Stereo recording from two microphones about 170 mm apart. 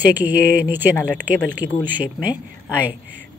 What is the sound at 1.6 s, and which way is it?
Speech, 35° left (ahead or behind).